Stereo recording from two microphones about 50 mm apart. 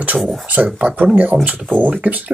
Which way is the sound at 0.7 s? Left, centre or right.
Right.